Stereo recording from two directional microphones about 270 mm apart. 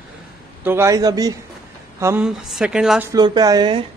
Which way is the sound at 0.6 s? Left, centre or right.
Centre.